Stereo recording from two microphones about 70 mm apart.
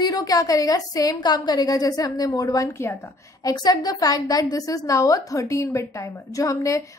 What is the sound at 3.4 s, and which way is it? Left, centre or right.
A woman's voice, left.